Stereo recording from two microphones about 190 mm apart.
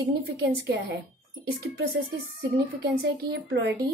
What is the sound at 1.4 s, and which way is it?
Speech, 60° right (ahead or behind).